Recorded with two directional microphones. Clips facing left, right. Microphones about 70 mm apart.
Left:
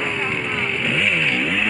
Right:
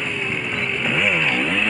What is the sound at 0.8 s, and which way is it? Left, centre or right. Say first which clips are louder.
Vehicle: right 2 dB; centre.